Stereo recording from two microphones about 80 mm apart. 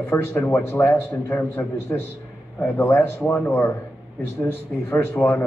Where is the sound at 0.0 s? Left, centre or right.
Left.